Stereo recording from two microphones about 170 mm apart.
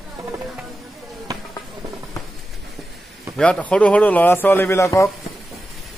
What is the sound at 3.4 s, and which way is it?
A man's voice, 5° left (ahead or behind).